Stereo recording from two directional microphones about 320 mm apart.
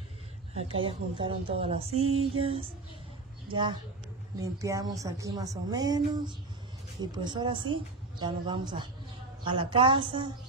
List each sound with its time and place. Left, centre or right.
0.6 s a woman's voice: centre
2.0 s a sound: right
2.3 s a woman's voice: centre
4.4 s a woman's voice: centre